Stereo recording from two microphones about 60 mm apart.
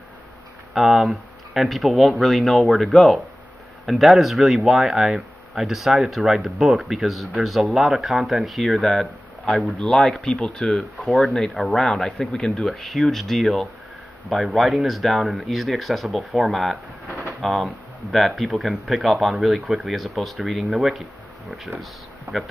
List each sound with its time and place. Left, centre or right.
0.7 s speech: centre
10.4 s speech: centre
10.8 s speech: centre
22.3 s speech: right